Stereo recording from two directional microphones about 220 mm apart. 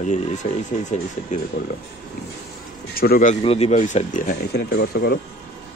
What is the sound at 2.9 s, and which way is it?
Speech, 40° left (ahead or behind).